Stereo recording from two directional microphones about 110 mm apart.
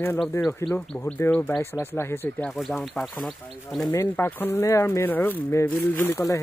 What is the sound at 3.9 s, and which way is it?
Speech, 20° left (ahead or behind).